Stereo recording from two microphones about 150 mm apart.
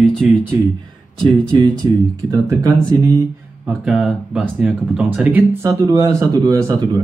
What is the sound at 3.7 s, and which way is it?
Speech, 5° right (ahead or behind).